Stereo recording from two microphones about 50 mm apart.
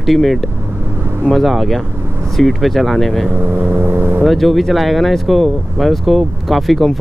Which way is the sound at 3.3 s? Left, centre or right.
Right.